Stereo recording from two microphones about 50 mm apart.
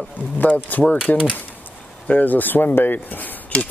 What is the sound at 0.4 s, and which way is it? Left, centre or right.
Speech, left.